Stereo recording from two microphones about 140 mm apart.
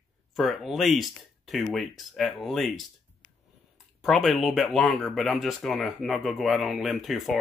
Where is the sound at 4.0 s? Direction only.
Centre (ahead or behind).